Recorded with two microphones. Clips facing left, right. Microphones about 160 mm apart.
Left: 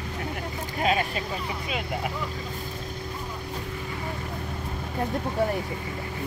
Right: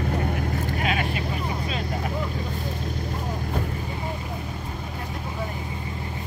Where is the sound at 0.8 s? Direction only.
30° left (ahead or behind).